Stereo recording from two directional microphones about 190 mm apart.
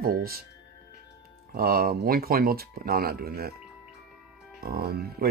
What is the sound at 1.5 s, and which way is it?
Speech, 50° right (ahead or behind).